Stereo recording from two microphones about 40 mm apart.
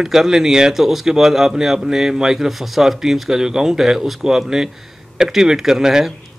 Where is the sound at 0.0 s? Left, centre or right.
Centre.